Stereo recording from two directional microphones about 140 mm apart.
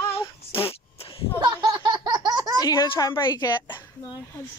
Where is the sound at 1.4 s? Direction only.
30° right (ahead or behind).